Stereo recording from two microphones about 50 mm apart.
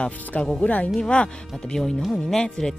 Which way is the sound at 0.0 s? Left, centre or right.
Left.